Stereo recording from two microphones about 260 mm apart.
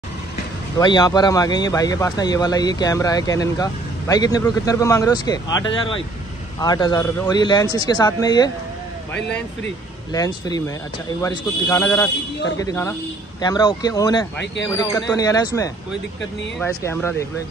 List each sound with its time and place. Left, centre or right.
0.7 s speech: centre
10.1 s speech: centre
14.4 s speech: left
14.7 s speech: centre